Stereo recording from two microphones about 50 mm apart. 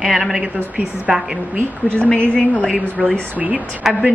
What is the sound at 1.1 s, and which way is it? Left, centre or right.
Speech, right.